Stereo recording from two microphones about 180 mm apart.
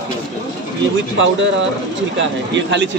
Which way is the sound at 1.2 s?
90° right.